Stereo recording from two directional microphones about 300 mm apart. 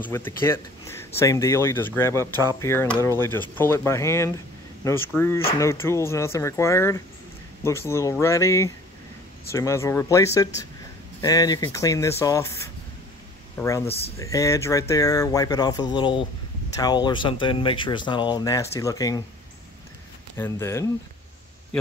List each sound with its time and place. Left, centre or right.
0.0 s speech: centre
13.6 s speech: centre
13.8 s speech: centre
20.3 s speech: centre